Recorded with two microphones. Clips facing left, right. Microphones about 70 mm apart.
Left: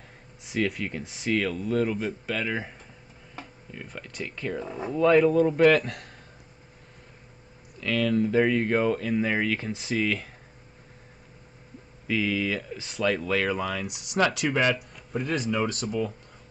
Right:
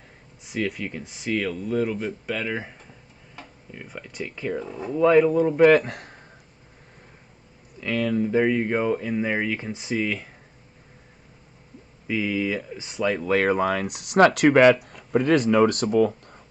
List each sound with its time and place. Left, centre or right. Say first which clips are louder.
0.5 s speech: even; centre
3.7 s speech: right 2 dB; centre
5.8 s speech: right 4 dB; right
7.8 s speech: right 1 dB; right
12.1 s speech: right 2 dB; right
13.2 s speech: right 5 dB; right
13.5 s speech: right 7 dB; right